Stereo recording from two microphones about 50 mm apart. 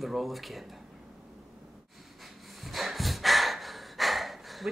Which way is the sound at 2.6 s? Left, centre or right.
Centre.